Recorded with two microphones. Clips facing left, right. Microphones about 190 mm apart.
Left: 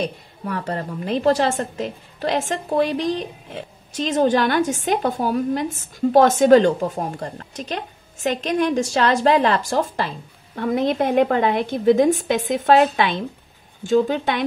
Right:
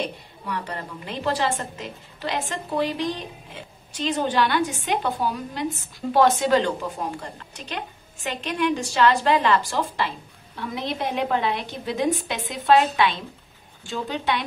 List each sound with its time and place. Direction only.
0.5 s a woman's voice: 40° left (ahead or behind)